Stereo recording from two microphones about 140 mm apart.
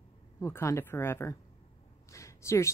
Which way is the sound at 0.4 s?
20° left (ahead or behind).